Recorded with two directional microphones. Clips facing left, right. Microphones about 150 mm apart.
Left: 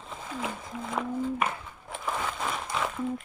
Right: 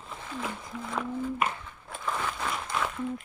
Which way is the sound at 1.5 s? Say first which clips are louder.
Left 2 dB; 20° left (ahead or behind).